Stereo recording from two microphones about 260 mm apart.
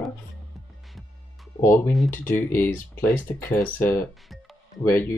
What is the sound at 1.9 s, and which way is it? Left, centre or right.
Speech, centre.